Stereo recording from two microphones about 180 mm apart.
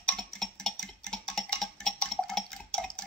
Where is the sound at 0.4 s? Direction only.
5° left (ahead or behind).